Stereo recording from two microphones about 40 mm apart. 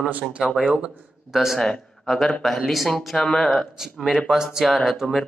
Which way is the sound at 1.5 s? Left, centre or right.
Centre.